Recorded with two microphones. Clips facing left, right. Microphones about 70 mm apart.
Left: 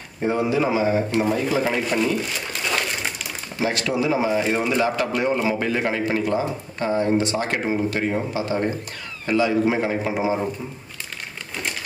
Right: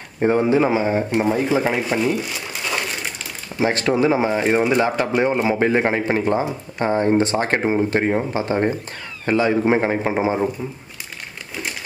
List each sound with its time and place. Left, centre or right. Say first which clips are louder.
0.2 s a man's voice: right 5 dB; right
1.1 s speech: right 3 dB; right
1.6 s speech: right 1 dB; centre
3.6 s a man's voice: right 5 dB; right